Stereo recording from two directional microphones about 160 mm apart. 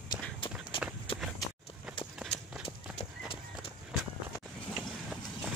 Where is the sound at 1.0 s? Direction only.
30° left (ahead or behind).